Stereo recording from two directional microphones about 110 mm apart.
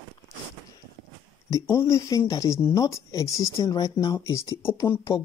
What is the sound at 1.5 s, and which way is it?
Speech, 25° left (ahead or behind).